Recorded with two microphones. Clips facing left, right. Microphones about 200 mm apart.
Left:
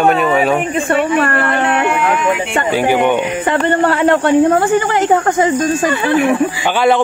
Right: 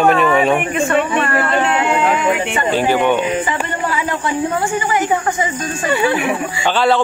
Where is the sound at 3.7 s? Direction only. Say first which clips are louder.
Left 9 dB; 65° left (ahead or behind); by 5.5 s 50° left (ahead or behind).